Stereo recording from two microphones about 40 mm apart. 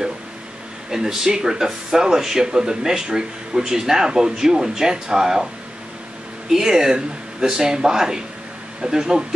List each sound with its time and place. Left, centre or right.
0.8 s speech: centre
6.5 s speech: centre